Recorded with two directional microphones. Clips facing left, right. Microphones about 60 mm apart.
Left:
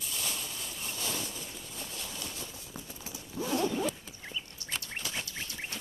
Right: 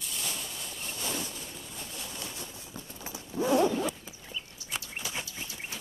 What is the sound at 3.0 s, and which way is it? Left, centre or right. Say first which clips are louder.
Horse: right 7 dB; right.